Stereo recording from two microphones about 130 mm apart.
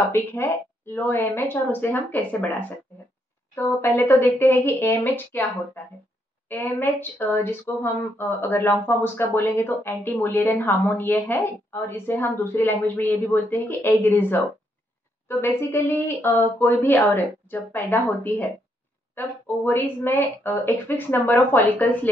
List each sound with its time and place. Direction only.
0.1 s speech: 20° left (ahead or behind)
3.5 s speech: 20° left (ahead or behind)